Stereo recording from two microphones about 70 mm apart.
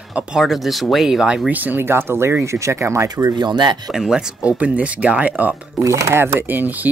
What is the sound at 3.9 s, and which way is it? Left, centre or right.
Speech, centre.